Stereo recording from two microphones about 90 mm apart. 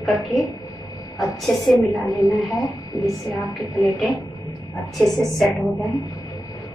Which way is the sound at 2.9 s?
35° left (ahead or behind).